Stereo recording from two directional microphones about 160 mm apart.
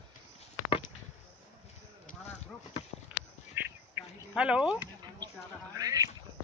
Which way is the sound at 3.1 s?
5° right (ahead or behind).